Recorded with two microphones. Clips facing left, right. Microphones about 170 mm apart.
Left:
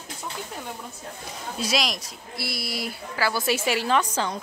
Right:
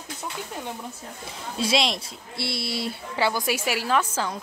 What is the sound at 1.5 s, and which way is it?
Speech, 25° right (ahead or behind).